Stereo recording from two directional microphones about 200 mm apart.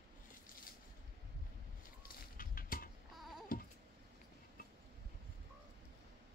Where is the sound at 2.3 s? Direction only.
45° left (ahead or behind).